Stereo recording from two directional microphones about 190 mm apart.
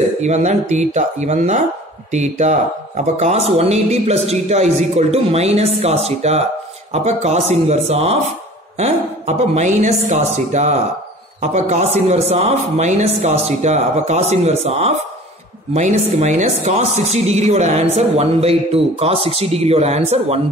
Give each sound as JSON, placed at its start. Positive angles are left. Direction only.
{"t": 0.2, "sound": "speech", "side_deg": -40}